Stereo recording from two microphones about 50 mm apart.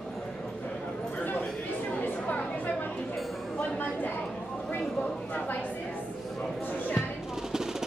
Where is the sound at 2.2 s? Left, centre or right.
Left.